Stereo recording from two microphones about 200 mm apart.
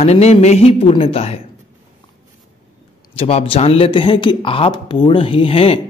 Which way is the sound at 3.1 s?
30° left (ahead or behind).